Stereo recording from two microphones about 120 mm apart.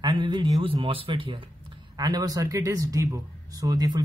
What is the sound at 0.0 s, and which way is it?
A man's voice, 40° right (ahead or behind).